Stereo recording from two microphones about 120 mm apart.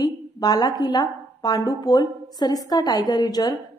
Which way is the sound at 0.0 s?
35° left (ahead or behind).